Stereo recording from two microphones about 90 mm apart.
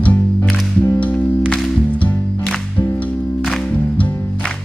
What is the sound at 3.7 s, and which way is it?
Music, 15° left (ahead or behind).